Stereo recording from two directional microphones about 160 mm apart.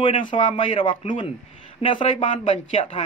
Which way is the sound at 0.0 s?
35° left (ahead or behind).